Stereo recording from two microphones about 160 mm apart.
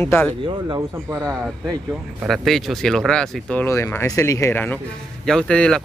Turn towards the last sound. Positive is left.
turn(degrees=5)  # may be behind; listen again after turning